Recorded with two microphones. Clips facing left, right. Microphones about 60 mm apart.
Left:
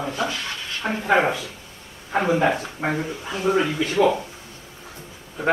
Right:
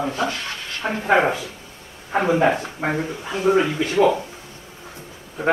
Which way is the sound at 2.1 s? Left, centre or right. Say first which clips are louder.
Right 2 dB; centre.